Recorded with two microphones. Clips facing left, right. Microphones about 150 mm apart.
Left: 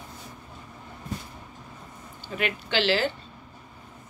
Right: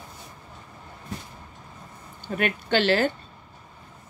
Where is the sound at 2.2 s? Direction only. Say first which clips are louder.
Right 3 dB; 50° right (ahead or behind).